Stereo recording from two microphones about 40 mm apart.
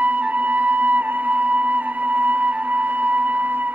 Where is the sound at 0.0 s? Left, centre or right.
Right.